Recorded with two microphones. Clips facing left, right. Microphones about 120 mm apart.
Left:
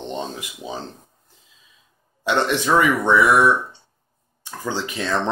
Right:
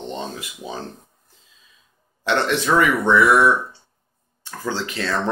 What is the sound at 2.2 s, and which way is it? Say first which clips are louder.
Speech: even; 15° left (ahead or behind).